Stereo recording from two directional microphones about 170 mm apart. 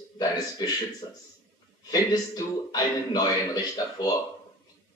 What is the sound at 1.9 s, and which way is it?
A man's voice, 20° left (ahead or behind).